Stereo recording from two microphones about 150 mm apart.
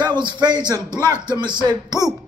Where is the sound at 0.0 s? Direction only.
30° right (ahead or behind).